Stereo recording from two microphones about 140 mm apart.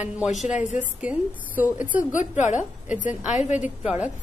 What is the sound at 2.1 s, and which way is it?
A woman's voice, 60° left (ahead or behind).